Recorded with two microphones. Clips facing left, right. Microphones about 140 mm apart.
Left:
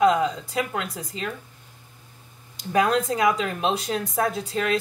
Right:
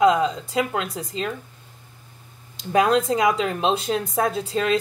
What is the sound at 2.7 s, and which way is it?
A woman's voice, 25° right (ahead or behind).